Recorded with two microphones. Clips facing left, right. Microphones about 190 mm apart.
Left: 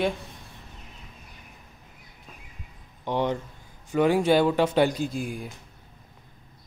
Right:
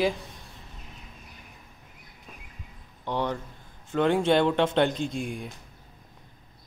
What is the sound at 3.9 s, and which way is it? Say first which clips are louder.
Speech: left 2 dB; 5° left (ahead or behind).